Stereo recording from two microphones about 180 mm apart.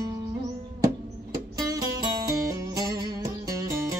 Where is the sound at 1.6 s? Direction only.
20° right (ahead or behind).